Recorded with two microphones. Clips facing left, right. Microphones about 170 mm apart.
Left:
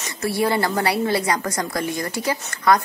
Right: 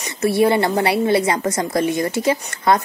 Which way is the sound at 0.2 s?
20° right (ahead or behind).